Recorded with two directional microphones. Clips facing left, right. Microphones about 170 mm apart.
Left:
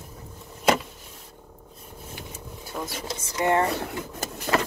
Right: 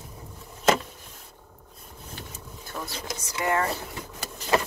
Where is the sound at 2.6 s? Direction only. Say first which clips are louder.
Left 3 dB; 10° left (ahead or behind).